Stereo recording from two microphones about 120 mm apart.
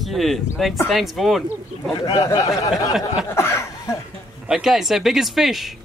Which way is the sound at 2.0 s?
30° left (ahead or behind).